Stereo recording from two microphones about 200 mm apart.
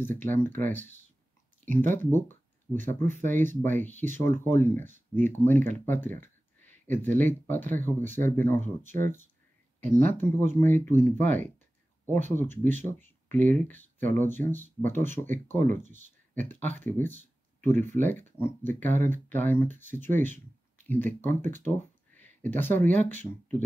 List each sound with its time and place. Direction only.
0.0 s speech: 10° left (ahead or behind)
1.8 s speech: 10° left (ahead or behind)
15.6 s speech: 40° right (ahead or behind)
15.9 s speech: 10° left (ahead or behind)